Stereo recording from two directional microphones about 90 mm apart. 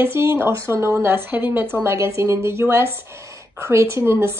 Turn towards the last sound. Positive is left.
turn(degrees=-30)  # may be behind; listen again after turning